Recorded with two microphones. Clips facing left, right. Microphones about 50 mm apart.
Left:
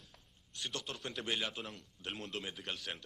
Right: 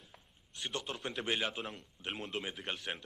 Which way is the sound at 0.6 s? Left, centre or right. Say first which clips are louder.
Right 3 dB; right.